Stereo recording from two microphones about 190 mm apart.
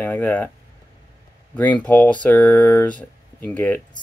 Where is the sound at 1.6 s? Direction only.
10° left (ahead or behind).